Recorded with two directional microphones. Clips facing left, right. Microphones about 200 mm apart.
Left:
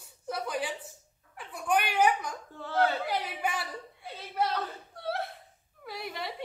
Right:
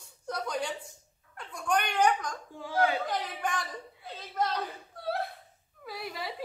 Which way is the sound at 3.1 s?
10° left (ahead or behind).